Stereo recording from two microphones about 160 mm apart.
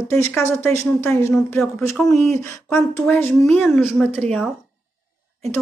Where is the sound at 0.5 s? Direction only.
15° left (ahead or behind).